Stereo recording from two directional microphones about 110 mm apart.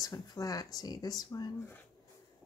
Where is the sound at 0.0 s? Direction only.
35° left (ahead or behind).